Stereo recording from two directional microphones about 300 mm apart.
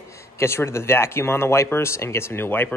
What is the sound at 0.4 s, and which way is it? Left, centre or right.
Speech, centre.